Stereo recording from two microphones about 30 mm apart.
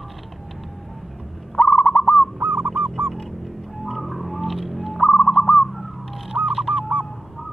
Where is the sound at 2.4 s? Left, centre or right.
Right.